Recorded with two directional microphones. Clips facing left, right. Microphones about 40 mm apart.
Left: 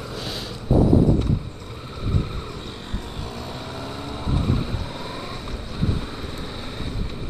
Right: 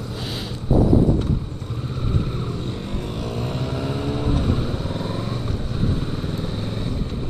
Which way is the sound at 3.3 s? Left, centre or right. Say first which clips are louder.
Right 7 dB; right.